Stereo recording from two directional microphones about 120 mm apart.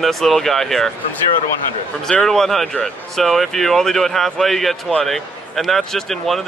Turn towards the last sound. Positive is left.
turn(degrees=0)  # may be behind; listen again after turning